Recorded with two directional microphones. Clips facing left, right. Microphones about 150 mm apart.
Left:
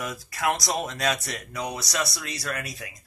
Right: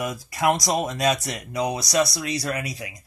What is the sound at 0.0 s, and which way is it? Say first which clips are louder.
Speech: right 5 dB; 25° right (ahead or behind).